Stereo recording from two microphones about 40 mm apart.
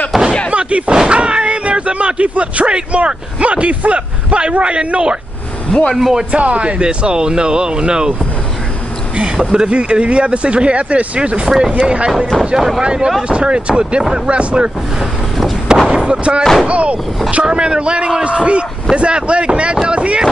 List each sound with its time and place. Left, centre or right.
0.1 s slam: centre
0.5 s artillery fire: right
0.9 s a sound: right
3.1 s speech: right
5.9 s speech: centre
6.3 s speech: right
9.1 s speech: right
11.4 s speech: centre
11.7 s speech: right
12.5 s speech: centre
12.8 s speech: right
15.9 s speech: right